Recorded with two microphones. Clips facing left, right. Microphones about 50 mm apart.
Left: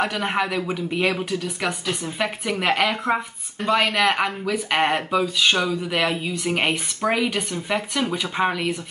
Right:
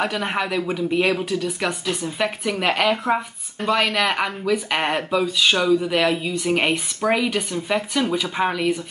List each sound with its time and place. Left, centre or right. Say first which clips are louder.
0.0 s speech: even; centre